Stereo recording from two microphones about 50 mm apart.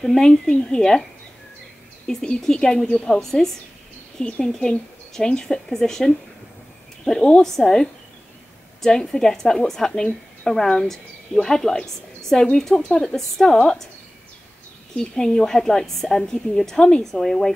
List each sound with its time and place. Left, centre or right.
0.0 s a woman's voice: centre
2.0 s a woman's voice: centre
4.2 s a woman's voice: left
4.5 s a woman's voice: centre
7.2 s a woman's voice: centre
15.0 s a woman's voice: centre